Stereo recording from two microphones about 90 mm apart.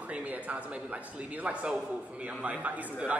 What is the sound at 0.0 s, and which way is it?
Speech, 15° right (ahead or behind).